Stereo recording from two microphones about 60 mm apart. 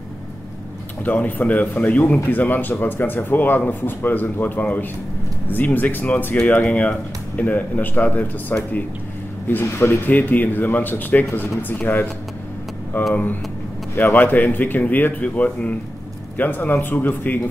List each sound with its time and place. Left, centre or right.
1.0 s a man's voice: left
13.1 s a man's voice: left